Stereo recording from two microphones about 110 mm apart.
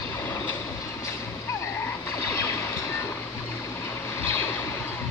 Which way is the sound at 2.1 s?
25° left (ahead or behind).